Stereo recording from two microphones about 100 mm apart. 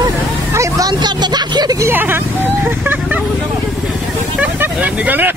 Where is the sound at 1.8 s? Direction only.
20° right (ahead or behind).